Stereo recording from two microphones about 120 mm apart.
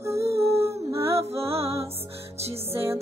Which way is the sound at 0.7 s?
20° right (ahead or behind).